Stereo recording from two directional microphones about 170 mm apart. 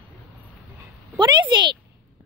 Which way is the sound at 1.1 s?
25° right (ahead or behind).